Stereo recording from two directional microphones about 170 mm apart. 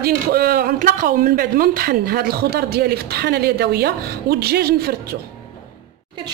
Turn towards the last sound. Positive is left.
turn(degrees=-65)  # may be behind; listen again after turning